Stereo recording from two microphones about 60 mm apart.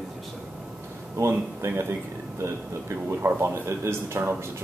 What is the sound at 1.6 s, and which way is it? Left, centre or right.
Speech, right.